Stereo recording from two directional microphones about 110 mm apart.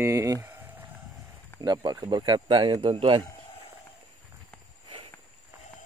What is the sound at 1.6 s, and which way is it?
Speech, 40° right (ahead or behind).